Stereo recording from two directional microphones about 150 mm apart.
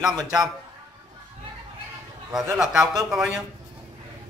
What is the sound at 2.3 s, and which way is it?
Speech, 25° right (ahead or behind).